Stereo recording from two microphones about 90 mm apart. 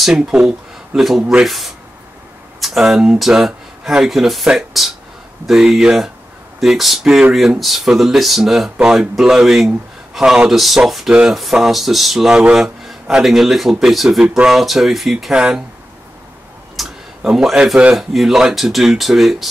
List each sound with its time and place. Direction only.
0.0 s speech: 5° right (ahead or behind)
16.7 s a sound: 5° right (ahead or behind)
17.9 s speech: centre (ahead or behind)